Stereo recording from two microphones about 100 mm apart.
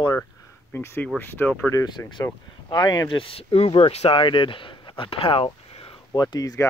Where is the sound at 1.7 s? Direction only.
40° left (ahead or behind).